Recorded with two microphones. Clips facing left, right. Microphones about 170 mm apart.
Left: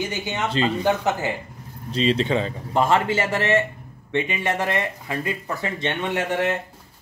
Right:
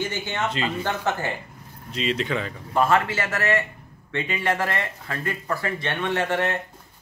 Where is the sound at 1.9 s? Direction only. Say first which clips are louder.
Left 5 dB; 30° left (ahead or behind); by 6.5 s 15° left (ahead or behind).